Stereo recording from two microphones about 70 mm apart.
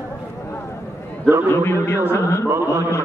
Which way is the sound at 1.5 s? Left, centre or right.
Left.